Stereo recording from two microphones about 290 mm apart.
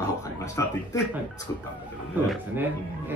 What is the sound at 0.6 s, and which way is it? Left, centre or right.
Speech, centre.